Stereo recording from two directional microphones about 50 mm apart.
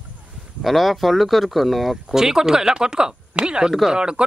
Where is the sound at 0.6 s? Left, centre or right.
Centre.